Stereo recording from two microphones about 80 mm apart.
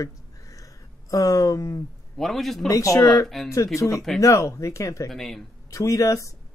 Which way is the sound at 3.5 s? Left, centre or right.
Left.